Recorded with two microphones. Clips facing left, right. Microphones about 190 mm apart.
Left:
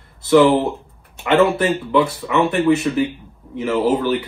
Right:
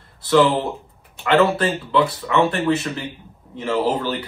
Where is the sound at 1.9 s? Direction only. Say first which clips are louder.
Left 2 dB; 15° left (ahead or behind).